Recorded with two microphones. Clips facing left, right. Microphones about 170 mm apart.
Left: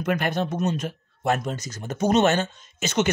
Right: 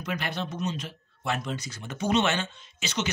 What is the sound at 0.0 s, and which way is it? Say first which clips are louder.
Speech: left 8 dB; 50° left (ahead or behind).